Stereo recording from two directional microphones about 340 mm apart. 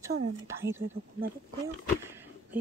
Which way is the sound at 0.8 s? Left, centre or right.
Right.